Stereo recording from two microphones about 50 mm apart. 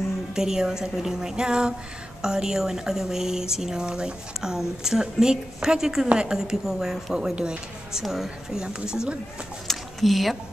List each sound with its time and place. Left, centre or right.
0.3 s speech: centre
7.3 s speech: centre
8.0 s speech: centre
9.7 s a sound: centre